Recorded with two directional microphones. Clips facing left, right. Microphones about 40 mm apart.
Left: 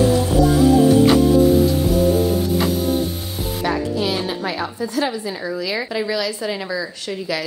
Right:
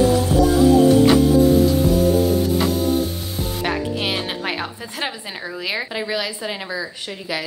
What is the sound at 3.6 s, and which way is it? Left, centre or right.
Music, right.